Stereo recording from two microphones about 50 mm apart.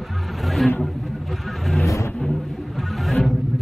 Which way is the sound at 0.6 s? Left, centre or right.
Centre.